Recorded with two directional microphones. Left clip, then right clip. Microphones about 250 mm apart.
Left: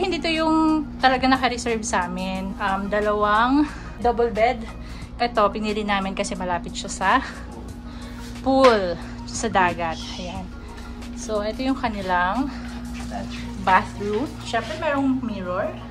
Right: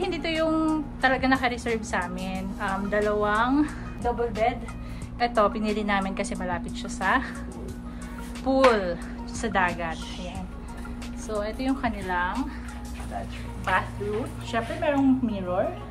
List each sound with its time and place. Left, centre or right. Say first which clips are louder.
0.0 s a sound: left 4 dB; centre
1.9 s speech: left 5 dB; centre
8.5 s speech: left 4 dB; centre
11.2 s speech: left 4 dB; centre
14.5 s speech: left 2 dB; centre